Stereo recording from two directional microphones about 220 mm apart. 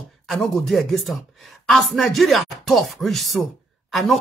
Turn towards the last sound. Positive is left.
turn(degrees=0)  # may be behind; listen again after turning